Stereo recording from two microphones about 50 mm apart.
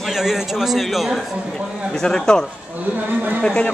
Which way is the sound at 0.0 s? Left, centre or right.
Centre.